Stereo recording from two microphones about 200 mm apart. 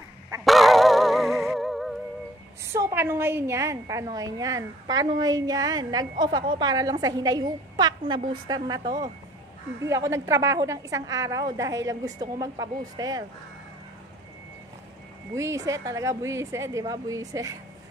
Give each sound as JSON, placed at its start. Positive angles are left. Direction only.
{"t": 0.5, "sound": "a sound", "side_deg": 0}
{"t": 2.7, "sound": "a woman's voice", "side_deg": -10}
{"t": 15.3, "sound": "a woman's voice", "side_deg": -15}